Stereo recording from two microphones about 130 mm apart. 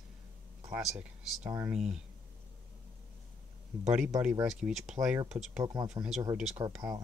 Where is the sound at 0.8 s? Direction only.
5° right (ahead or behind).